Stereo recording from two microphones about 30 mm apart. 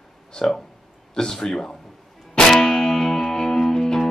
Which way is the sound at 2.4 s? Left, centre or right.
Centre.